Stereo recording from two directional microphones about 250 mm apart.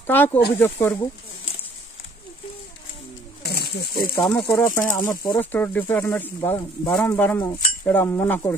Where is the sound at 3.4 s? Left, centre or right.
Left.